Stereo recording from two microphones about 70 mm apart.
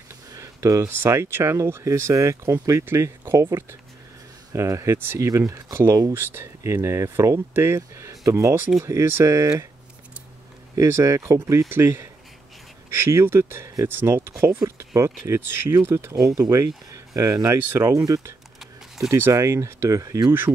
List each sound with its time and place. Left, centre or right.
0.3 s speech: right
2.8 s speech: right
4.6 s speech: right
4.9 s speech: right
10.8 s speech: right
15.8 s speech: right
19.0 s speech: right
19.3 s speech: right
20.2 s speech: right